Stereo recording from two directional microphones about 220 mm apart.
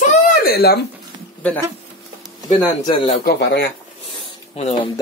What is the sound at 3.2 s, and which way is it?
Speech, 45° left (ahead or behind).